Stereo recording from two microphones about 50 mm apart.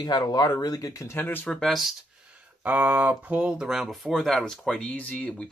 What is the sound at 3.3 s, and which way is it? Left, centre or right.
Speech, centre.